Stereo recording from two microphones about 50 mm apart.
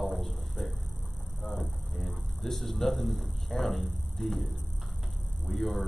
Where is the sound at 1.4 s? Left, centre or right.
Left.